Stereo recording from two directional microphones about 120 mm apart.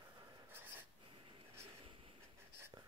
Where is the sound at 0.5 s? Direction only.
15° right (ahead or behind).